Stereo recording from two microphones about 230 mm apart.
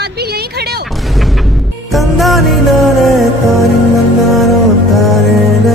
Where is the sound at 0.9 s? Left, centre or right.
Centre.